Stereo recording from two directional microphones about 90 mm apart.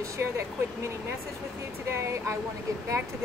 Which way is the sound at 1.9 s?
35° right (ahead or behind).